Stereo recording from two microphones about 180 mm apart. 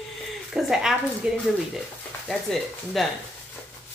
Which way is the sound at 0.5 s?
5° right (ahead or behind).